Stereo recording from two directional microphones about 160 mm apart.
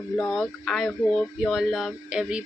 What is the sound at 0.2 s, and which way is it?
Speech, 5° left (ahead or behind).